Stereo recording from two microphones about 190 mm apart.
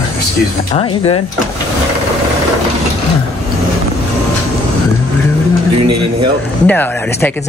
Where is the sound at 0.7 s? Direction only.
30° left (ahead or behind).